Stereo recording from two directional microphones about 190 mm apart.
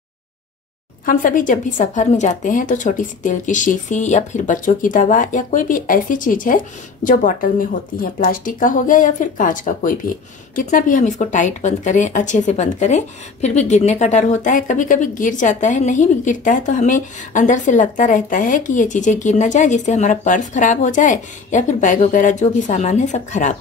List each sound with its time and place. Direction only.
1.0 s a woman's voice: 45° left (ahead or behind)